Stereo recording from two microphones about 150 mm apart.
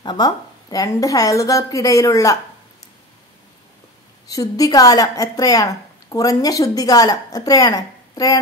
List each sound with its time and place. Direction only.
0.0 s speech: 30° left (ahead or behind)
4.3 s speech: 25° left (ahead or behind)